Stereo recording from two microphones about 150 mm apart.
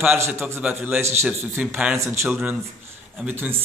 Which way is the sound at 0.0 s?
10° right (ahead or behind).